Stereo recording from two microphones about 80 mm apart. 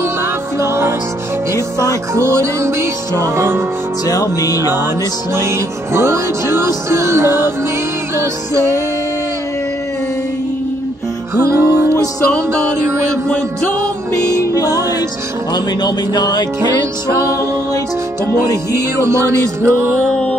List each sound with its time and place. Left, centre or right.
0.6 s music: right
4.0 s music: left
5.3 s music: right
11.3 s music: right
14.4 s music: left
15.5 s speech: left
17.1 s music: right
18.7 s music: right